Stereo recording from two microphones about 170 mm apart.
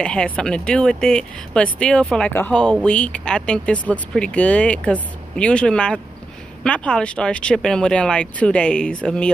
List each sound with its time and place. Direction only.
0.0 s speech: 5° left (ahead or behind)